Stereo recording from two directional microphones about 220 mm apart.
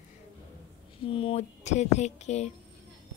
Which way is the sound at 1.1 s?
25° left (ahead or behind).